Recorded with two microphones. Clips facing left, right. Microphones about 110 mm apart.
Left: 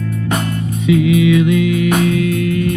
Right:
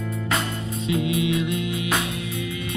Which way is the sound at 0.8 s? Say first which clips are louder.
Left 11 dB; 70° left (ahead or behind).